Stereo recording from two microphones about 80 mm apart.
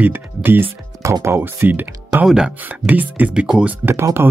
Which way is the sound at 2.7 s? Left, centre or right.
Right.